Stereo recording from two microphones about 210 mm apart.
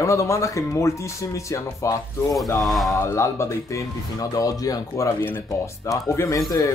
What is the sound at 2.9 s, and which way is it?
Speech, 15° left (ahead or behind).